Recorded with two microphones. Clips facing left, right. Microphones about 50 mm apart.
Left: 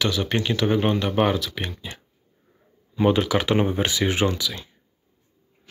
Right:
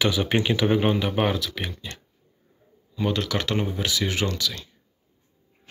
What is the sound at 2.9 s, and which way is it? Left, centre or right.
Speech, left.